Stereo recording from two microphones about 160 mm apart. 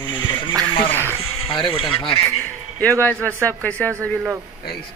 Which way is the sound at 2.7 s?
10° left (ahead or behind).